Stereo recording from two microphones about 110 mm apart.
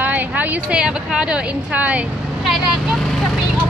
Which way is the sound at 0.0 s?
15° right (ahead or behind).